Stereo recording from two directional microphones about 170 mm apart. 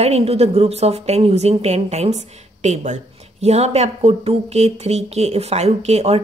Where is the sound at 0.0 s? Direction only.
35° right (ahead or behind).